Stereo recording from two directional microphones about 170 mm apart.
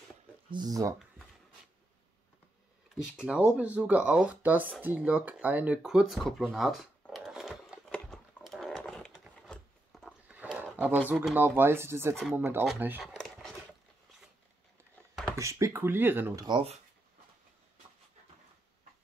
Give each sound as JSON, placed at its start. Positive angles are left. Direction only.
{"t": 0.5, "sound": "speech", "side_deg": -25}
{"t": 3.2, "sound": "speech", "side_deg": -5}
{"t": 5.8, "sound": "a sound", "side_deg": 0}
{"t": 10.2, "sound": "a sound", "side_deg": -10}
{"t": 11.1, "sound": "speech", "side_deg": -10}
{"t": 15.3, "sound": "speech", "side_deg": -20}
{"t": 16.4, "sound": "speech", "side_deg": -30}